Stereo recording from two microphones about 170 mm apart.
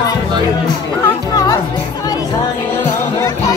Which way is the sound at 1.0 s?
20° left (ahead or behind).